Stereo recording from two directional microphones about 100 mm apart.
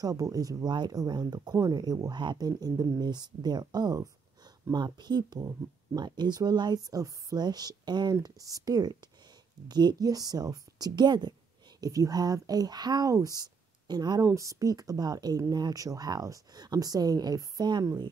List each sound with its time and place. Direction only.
0.0 s speech: 35° right (ahead or behind)
14.2 s speech: 30° right (ahead or behind)